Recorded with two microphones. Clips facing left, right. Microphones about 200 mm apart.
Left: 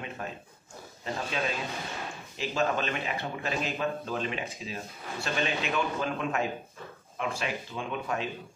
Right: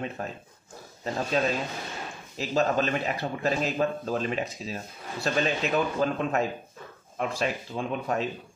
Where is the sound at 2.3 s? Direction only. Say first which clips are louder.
Right 4 dB; 40° right (ahead or behind).